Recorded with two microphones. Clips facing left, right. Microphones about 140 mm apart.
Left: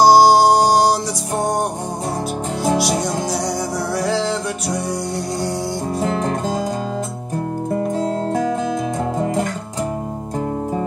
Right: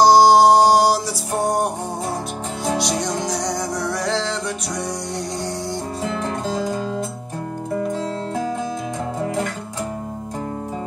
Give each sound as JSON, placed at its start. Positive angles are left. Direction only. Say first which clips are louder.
{"t": 0.0, "sound": "music", "louder": "left 1 dB", "side_deg": 5}
{"t": 2.8, "sound": "music", "louder": "left 3 dB", "side_deg": 5}
{"t": 6.1, "sound": "music", "louder": "left 3 dB", "side_deg": 45}
{"t": 7.7, "sound": "music", "louder": "left 3 dB", "side_deg": 40}